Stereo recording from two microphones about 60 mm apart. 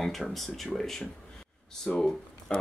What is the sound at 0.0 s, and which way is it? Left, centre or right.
Speech, centre.